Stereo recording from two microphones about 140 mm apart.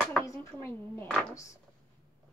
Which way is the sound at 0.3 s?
15° left (ahead or behind).